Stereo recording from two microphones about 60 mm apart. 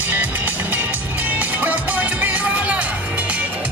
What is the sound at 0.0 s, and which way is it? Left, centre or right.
Music, right.